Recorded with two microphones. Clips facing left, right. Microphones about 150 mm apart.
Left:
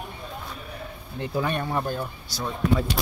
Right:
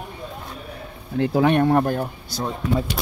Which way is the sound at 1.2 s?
70° right (ahead or behind).